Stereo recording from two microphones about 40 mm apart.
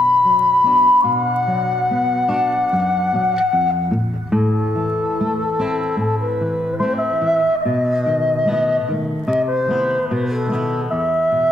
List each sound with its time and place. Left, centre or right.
0.7 s music: centre
3.3 s music: centre
7.2 s music: centre
11.2 s music: centre